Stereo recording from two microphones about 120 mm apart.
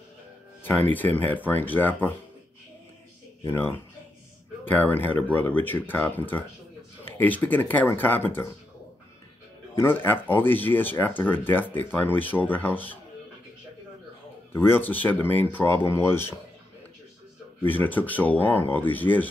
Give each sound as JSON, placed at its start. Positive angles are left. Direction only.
{"t": 0.9, "sound": "speech", "side_deg": 15}
{"t": 3.4, "sound": "speech", "side_deg": 20}
{"t": 9.8, "sound": "speech", "side_deg": 15}
{"t": 14.5, "sound": "speech", "side_deg": 20}
{"t": 17.6, "sound": "speech", "side_deg": 15}